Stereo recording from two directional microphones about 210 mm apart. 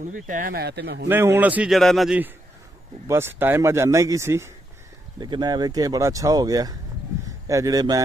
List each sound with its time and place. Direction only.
0.1 s speech: 40° right (ahead or behind)
1.0 s speech: 10° right (ahead or behind)